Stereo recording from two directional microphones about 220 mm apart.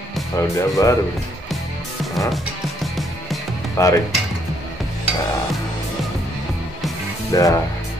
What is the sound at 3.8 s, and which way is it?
Speech, 15° left (ahead or behind).